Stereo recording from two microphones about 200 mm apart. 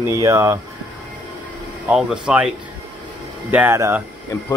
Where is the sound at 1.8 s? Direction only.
5° right (ahead or behind).